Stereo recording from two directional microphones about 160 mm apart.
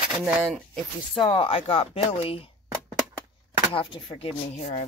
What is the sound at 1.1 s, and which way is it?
Speech, 30° left (ahead or behind).